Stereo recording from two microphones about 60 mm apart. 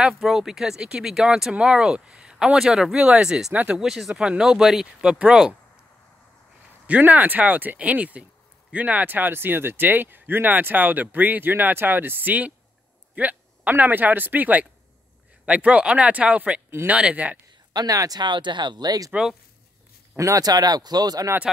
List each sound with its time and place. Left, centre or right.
0.0 s speech: centre
3.5 s speech: right
3.8 s speech: centre
4.1 s speech: centre
6.9 s speech: right
17.7 s speech: right
20.2 s speech: right